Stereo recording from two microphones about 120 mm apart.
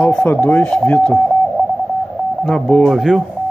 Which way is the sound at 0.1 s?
15° left (ahead or behind).